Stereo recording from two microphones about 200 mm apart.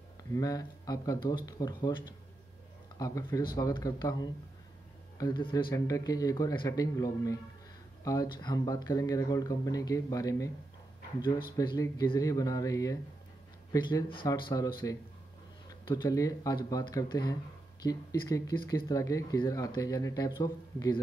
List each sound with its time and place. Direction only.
0.2 s speech: 20° left (ahead or behind)
11.5 s speech: 20° left (ahead or behind)
15.9 s speech: 20° left (ahead or behind)